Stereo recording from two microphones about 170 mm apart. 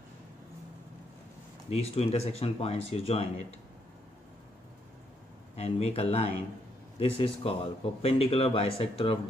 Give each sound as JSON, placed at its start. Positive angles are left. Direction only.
{"t": 1.7, "sound": "speech", "side_deg": 35}
{"t": 5.6, "sound": "speech", "side_deg": 35}